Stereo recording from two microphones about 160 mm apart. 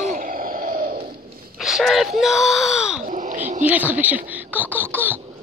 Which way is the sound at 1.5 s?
Centre (ahead or behind).